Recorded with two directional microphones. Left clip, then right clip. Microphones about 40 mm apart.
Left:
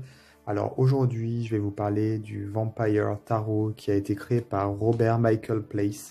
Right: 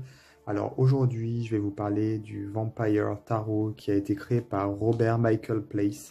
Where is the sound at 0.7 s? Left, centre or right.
Left.